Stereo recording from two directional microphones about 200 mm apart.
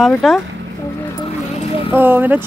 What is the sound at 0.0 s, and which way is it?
Speech, centre (ahead or behind).